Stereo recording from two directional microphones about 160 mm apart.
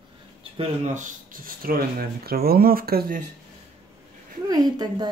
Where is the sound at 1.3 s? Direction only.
65° right (ahead or behind).